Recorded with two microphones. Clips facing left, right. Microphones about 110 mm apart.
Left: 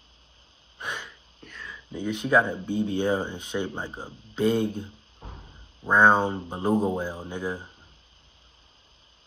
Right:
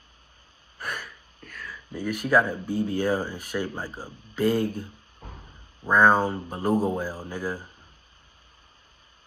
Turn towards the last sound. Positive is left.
turn(degrees=25)  # may be behind; listen again after turning